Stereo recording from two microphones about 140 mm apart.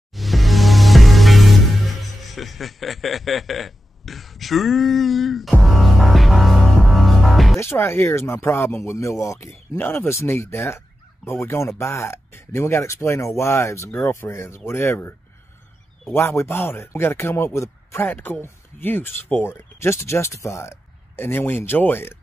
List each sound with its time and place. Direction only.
0.1 s music: centre (ahead or behind)
2.2 s a sound: centre (ahead or behind)
7.5 s a man's voice: 20° left (ahead or behind)